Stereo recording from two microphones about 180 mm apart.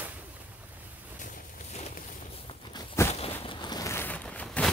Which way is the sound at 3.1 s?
30° left (ahead or behind).